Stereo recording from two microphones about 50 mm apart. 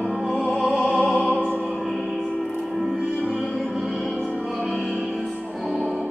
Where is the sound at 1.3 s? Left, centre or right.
Right.